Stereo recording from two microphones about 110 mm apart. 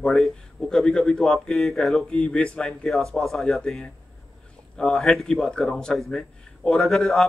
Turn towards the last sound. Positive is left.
turn(degrees=5)  # may be behind; listen again after turning